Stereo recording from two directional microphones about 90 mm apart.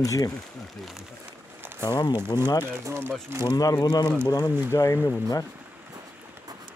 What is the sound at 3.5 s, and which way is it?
Speech, 50° left (ahead or behind).